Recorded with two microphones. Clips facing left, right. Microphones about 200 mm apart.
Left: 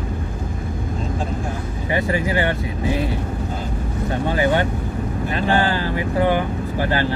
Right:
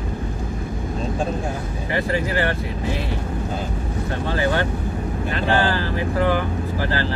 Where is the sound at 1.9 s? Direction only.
20° left (ahead or behind).